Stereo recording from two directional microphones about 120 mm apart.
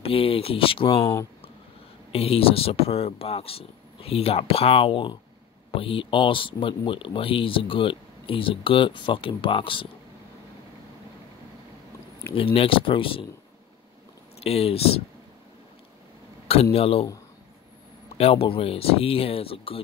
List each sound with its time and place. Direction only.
0.0 s speech: 50° left (ahead or behind)
2.1 s speech: 55° left (ahead or behind)
12.5 s speech: 50° left (ahead or behind)
14.4 s speech: 55° left (ahead or behind)
16.7 s speech: 55° left (ahead or behind)
18.1 s speech: 55° left (ahead or behind)